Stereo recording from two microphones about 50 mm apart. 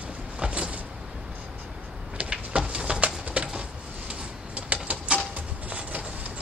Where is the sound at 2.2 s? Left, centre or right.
Centre.